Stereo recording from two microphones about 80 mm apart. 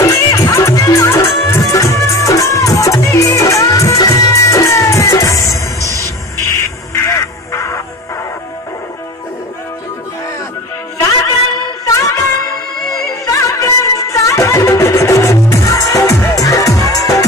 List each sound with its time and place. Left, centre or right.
0.0 s music: left
5.9 s music: right
6.4 s music: left
11.0 s music: left
11.8 s music of bollywood: left
13.2 s music: left